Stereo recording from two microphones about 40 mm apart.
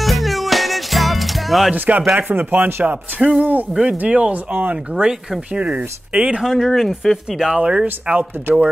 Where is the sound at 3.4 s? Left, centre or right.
Right.